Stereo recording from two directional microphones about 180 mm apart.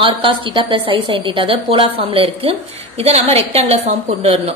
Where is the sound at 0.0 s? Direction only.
25° right (ahead or behind).